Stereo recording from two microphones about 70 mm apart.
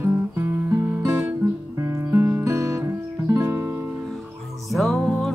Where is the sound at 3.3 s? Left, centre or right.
Right.